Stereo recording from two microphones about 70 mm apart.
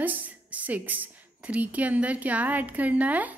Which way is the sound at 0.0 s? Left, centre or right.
Right.